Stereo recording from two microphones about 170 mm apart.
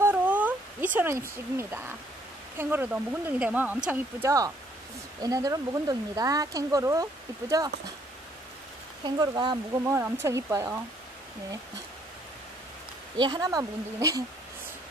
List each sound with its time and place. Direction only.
0.0 s a sound: 10° right (ahead or behind)
1.6 s speech: 15° right (ahead or behind)
9.0 s speech: 25° right (ahead or behind)
9.8 s speech: 15° right (ahead or behind)
13.2 s speech: 25° right (ahead or behind)